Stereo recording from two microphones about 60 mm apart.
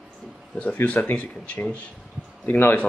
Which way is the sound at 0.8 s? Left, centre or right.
Left.